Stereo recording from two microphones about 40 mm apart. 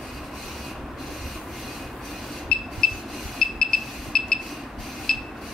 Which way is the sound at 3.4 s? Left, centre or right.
Centre.